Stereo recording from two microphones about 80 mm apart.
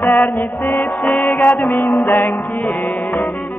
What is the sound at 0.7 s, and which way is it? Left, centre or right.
Music, left.